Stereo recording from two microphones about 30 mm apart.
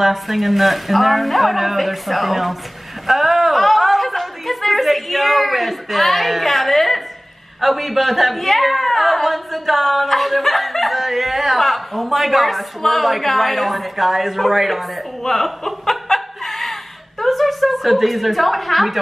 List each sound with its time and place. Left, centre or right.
0.0 s speech: centre
15.2 s chuckle: centre
17.2 s a woman's voice: centre